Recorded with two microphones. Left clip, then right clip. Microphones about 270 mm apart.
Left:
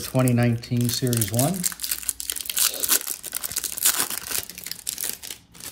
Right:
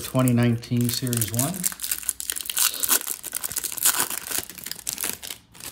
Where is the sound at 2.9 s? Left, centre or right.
Centre.